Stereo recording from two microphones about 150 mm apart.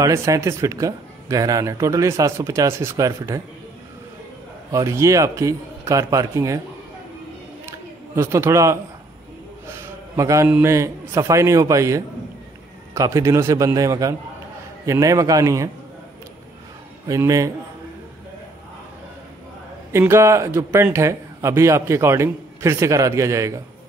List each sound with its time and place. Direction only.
0.0 s a man's voice: 20° right (ahead or behind)
4.6 s a man's voice: 20° right (ahead or behind)
7.6 s a sound: 15° right (ahead or behind)
10.5 s a man's voice: 20° right (ahead or behind)
17.1 s a man's voice: 20° right (ahead or behind)
19.9 s a man's voice: 15° right (ahead or behind)